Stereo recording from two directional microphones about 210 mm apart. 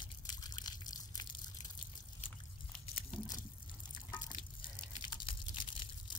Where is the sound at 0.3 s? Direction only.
20° left (ahead or behind).